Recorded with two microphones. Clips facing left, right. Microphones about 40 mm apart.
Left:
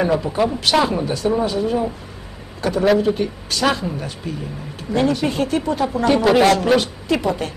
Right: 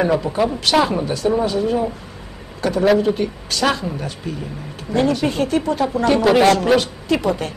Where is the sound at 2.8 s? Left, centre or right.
Centre.